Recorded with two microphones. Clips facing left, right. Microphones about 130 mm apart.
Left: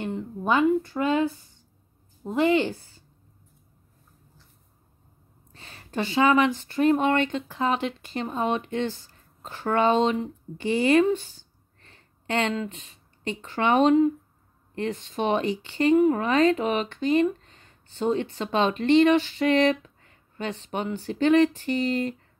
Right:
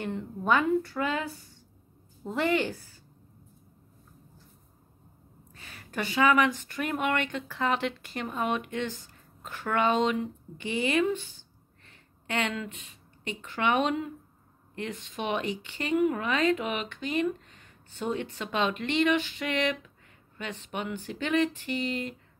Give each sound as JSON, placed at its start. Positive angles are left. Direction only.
{"t": 0.1, "sound": "speech", "side_deg": 20}
{"t": 5.5, "sound": "speech", "side_deg": 30}